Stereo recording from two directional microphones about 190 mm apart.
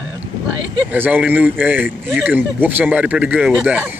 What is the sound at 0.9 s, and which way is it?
Speech, 10° right (ahead or behind).